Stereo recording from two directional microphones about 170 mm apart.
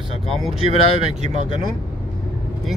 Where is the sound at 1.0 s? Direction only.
40° right (ahead or behind).